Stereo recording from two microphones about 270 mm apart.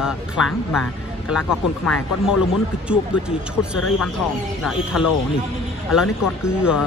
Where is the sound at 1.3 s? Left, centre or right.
Centre.